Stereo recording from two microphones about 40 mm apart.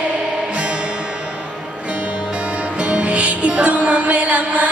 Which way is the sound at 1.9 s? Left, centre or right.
Right.